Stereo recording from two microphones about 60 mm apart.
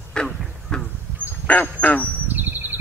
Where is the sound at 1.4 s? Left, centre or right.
Left.